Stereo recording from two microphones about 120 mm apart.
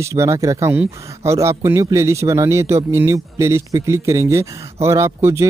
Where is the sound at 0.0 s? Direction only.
25° right (ahead or behind).